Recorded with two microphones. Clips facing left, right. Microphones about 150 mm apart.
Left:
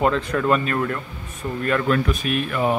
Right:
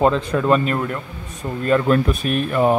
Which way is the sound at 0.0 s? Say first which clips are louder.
Right 3 dB; 15° right (ahead or behind).